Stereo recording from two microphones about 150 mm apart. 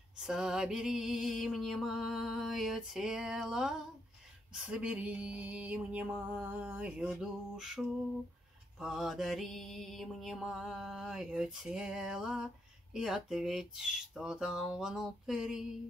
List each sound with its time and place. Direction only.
0.2 s mantra: 5° right (ahead or behind)
4.6 s music: 10° right (ahead or behind)
8.7 s mantra: centre (ahead or behind)